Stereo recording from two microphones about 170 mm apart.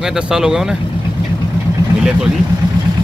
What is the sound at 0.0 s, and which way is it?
Speech, 5° right (ahead or behind).